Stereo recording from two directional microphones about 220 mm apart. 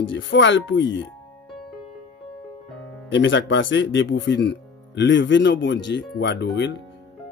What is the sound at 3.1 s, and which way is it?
Speech, 55° left (ahead or behind).